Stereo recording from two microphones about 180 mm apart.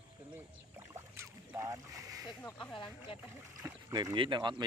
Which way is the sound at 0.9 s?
15° right (ahead or behind).